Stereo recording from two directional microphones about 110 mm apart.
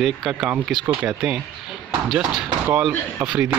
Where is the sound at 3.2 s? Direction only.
10° right (ahead or behind).